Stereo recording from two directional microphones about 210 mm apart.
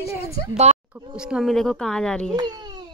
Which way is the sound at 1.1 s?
5° right (ahead or behind).